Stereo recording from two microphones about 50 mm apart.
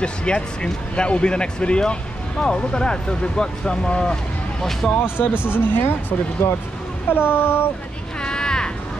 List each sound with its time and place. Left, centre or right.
0.0 s speech: centre
4.9 s speech: left
8.2 s a sound: centre